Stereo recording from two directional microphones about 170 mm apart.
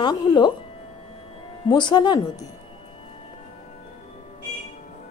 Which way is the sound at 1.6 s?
25° left (ahead or behind).